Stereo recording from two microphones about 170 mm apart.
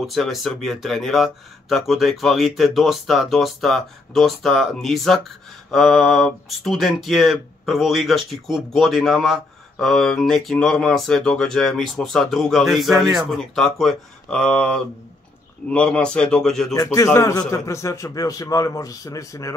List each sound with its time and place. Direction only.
0.0 s speech: centre (ahead or behind)
16.7 s a man's voice: 20° left (ahead or behind)